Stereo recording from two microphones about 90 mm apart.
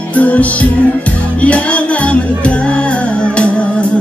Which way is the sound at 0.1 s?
15° left (ahead or behind).